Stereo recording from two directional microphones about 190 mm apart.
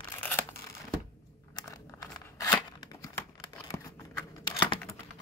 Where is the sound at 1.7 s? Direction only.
15° left (ahead or behind).